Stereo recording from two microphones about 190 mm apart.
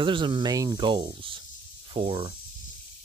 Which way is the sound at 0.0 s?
25° right (ahead or behind).